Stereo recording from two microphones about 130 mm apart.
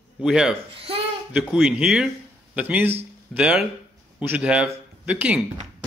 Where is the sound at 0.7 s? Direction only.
45° right (ahead or behind).